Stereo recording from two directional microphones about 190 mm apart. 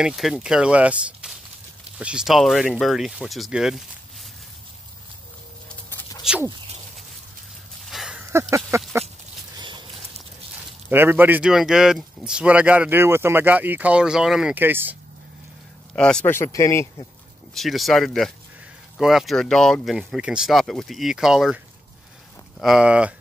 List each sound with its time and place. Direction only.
0.0 s speech: centre (ahead or behind)
5.7 s patter: 10° left (ahead or behind)
6.2 s speech: 5° right (ahead or behind)
7.8 s a sound: centre (ahead or behind)
8.3 s speech: 15° right (ahead or behind)
9.6 s a sound: 25° right (ahead or behind)
10.9 s speech: 10° right (ahead or behind)
15.9 s speech: 5° left (ahead or behind)
17.6 s speech: centre (ahead or behind)
22.6 s speech: 5° right (ahead or behind)